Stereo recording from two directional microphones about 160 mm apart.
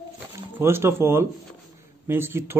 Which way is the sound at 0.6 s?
15° right (ahead or behind).